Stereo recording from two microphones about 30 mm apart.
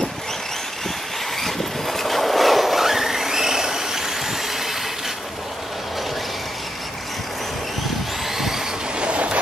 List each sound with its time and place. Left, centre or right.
1.4 s vehicle: centre
9.0 s vehicle: right